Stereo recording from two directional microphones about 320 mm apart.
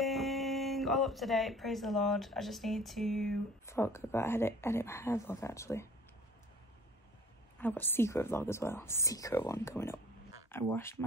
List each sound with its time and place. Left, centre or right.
0.0 s speech: centre
7.5 s a woman's voice: centre